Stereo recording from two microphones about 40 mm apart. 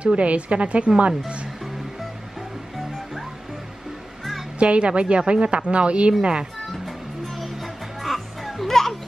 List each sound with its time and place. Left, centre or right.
0.0 s a woman's voice: right
4.6 s speech: right
7.3 s music: centre
8.6 s children playing: centre